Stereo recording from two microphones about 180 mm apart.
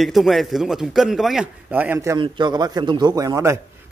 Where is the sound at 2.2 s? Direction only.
25° right (ahead or behind).